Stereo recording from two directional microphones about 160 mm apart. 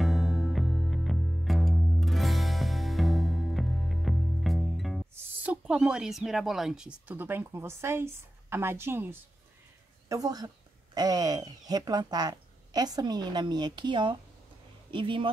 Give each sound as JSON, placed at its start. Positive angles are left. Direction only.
{"t": 0.0, "sound": "music", "side_deg": 0}
{"t": 5.1, "sound": "a woman's voice", "side_deg": -10}